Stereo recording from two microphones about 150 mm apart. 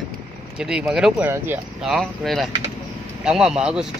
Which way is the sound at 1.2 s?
15° right (ahead or behind).